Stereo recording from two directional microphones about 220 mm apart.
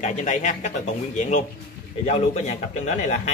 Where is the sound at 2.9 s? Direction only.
30° left (ahead or behind).